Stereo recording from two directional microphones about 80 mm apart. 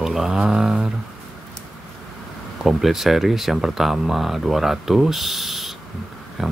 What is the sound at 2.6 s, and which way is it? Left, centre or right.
Speech, centre.